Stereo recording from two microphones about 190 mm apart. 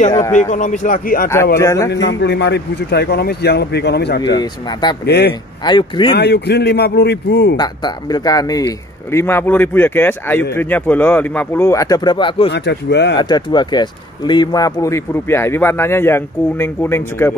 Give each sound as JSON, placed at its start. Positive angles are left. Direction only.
{"t": 0.3, "sound": "a man's voice", "side_deg": 40}
{"t": 1.6, "sound": "speech", "side_deg": 15}
{"t": 1.9, "sound": "a man's voice", "side_deg": 70}
{"t": 4.4, "sound": "speech", "side_deg": 20}
{"t": 5.0, "sound": "a man's voice", "side_deg": 60}
{"t": 5.6, "sound": "speech", "side_deg": 25}
{"t": 6.1, "sound": "a man's voice", "side_deg": 60}
{"t": 7.5, "sound": "speech", "side_deg": 20}
{"t": 12.4, "sound": "a man's voice", "side_deg": 65}
{"t": 13.2, "sound": "speech", "side_deg": 25}